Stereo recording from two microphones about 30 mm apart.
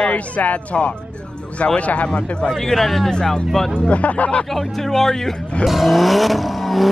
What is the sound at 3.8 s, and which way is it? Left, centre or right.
Speech, left.